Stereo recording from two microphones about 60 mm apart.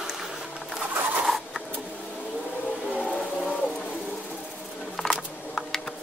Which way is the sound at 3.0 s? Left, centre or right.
Centre.